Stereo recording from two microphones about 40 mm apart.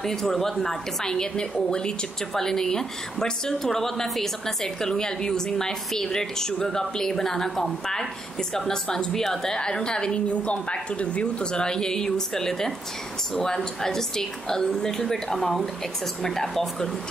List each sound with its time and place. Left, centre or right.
0.0 s a woman's voice: centre
13.8 s speech: centre